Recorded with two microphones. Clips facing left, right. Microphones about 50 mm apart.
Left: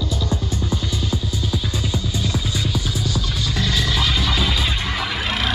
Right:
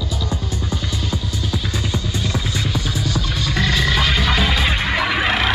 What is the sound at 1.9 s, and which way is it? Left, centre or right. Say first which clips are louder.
Music: even; right.